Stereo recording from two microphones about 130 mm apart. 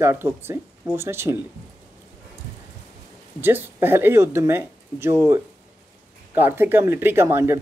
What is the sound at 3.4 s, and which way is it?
Speech, 15° right (ahead or behind).